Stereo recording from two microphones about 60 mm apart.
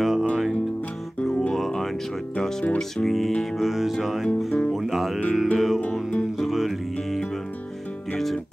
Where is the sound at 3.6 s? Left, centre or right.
Centre.